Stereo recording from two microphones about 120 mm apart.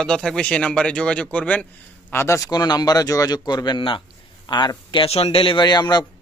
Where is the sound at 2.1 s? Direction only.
25° left (ahead or behind).